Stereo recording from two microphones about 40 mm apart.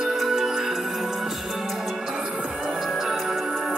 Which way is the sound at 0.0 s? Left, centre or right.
Centre.